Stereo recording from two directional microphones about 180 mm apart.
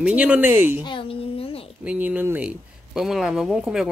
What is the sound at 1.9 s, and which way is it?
Speech, 10° right (ahead or behind).